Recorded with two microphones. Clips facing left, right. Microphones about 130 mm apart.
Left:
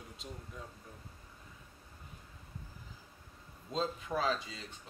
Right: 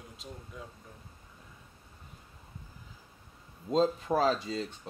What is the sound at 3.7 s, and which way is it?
Speech, 40° right (ahead or behind).